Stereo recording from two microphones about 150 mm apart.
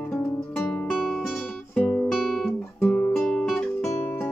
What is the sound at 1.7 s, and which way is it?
Music, 5° left (ahead or behind).